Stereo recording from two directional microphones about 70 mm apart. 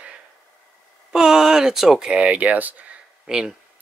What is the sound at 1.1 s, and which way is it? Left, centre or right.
Speech, centre.